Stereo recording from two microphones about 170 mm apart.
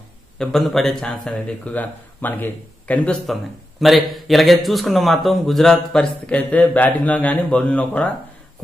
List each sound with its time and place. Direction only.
0.4 s speech: centre (ahead or behind)